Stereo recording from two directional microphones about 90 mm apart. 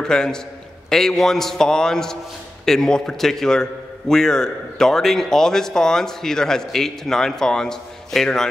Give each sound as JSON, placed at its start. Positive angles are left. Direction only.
{"t": 0.0, "sound": "a man's voice", "side_deg": 5}